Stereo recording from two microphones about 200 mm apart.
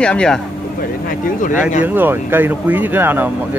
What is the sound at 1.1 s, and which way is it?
Speech, 40° left (ahead or behind).